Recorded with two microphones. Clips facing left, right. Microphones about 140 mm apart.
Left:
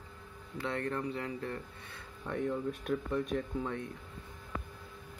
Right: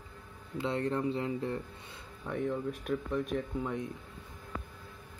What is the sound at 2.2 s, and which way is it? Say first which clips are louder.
Speech: right 1 dB; centre (ahead or behind).